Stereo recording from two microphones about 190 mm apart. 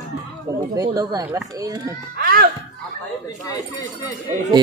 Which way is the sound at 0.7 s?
20° right (ahead or behind).